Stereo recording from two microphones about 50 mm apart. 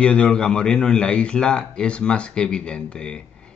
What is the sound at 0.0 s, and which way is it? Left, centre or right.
Speech, left.